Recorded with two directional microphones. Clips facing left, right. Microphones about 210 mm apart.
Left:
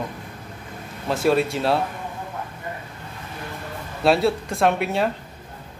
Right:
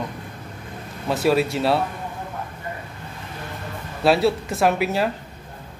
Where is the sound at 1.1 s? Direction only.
Centre (ahead or behind).